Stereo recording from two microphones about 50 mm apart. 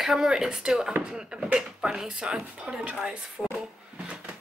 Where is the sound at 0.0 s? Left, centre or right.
Centre.